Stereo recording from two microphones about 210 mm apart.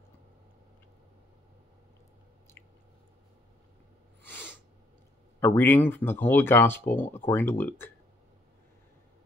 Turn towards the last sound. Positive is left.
turn(degrees=10)  # may be behind; listen again after turning